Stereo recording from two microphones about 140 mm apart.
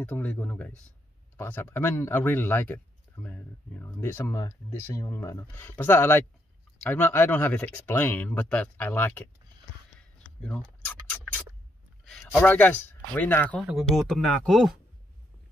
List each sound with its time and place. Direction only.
0.1 s a man's voice: 10° left (ahead or behind)
12.0 s speech: 5° left (ahead or behind)
13.9 s speech: centre (ahead or behind)